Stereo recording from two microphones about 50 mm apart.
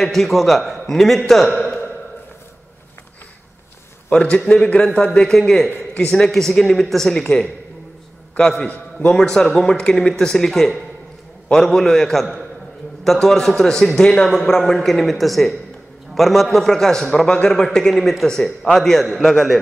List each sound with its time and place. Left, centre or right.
0.0 s a man's voice: centre
4.5 s a man's voice: left
5.3 s speech: centre
8.5 s a man's voice: left; by 19.6 s centre